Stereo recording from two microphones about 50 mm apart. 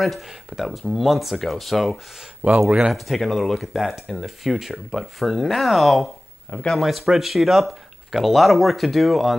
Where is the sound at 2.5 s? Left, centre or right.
Centre.